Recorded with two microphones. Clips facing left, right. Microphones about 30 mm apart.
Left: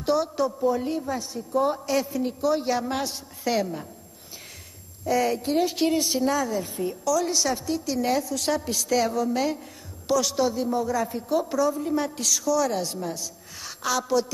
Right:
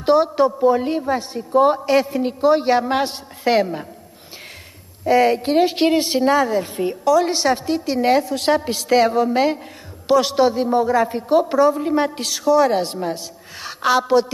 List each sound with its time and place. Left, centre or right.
0.0 s a woman's voice: right
5.0 s a woman's voice: right